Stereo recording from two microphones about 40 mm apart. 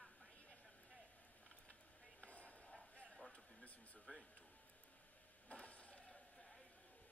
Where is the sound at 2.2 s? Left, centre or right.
Left.